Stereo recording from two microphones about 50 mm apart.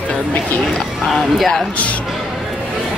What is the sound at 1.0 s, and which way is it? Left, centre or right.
Speech, centre.